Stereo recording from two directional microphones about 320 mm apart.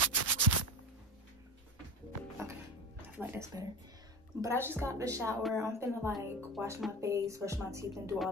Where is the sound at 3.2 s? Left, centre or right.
Centre.